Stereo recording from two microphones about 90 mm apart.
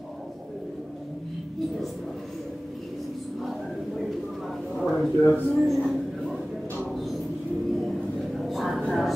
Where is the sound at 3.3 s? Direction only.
Centre (ahead or behind).